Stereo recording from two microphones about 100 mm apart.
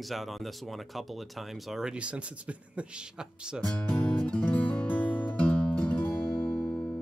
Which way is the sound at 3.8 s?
10° left (ahead or behind).